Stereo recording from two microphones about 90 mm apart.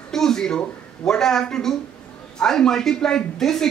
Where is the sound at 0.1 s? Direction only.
5° left (ahead or behind).